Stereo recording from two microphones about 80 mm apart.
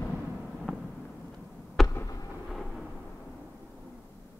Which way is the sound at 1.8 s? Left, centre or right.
Centre.